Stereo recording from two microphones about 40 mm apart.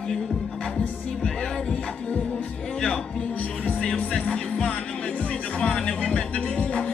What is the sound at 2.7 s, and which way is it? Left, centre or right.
Music, centre.